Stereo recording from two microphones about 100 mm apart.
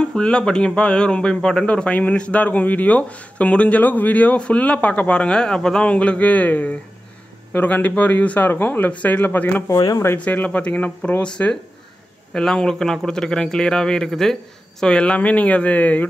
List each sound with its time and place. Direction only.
0.1 s speech: 10° left (ahead or behind)